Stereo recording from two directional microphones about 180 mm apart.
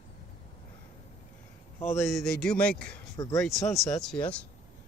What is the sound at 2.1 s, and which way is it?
A man's voice, centre (ahead or behind).